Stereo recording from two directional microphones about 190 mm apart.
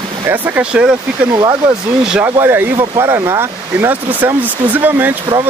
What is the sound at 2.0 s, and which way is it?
Speech, 10° right (ahead or behind).